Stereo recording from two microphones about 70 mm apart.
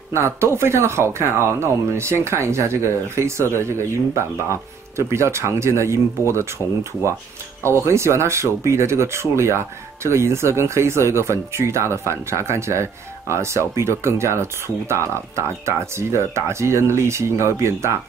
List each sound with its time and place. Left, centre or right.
0.1 s speech: right